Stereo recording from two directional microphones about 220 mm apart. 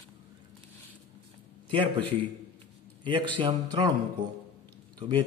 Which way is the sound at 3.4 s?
20° right (ahead or behind).